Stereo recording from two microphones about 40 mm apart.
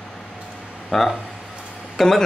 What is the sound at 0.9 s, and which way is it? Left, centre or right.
Speech, centre.